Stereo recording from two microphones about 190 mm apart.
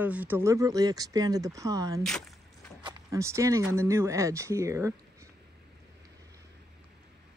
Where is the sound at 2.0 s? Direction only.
5° left (ahead or behind).